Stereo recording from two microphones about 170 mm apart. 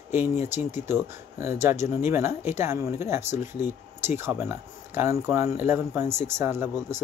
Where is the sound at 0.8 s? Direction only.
15° right (ahead or behind).